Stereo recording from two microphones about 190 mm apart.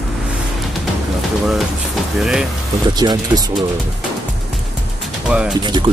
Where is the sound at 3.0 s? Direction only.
20° right (ahead or behind).